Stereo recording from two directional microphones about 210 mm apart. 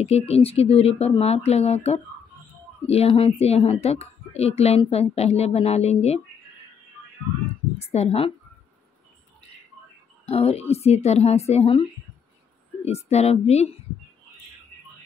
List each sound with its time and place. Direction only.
0.0 s a woman's voice: 30° left (ahead or behind)
7.9 s a woman's voice: 30° left (ahead or behind)
10.2 s a woman's voice: 30° left (ahead or behind)